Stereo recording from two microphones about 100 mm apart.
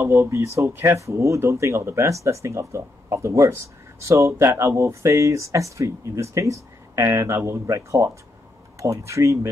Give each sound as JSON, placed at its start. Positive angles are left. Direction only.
{"t": 0.0, "sound": "speech", "side_deg": -25}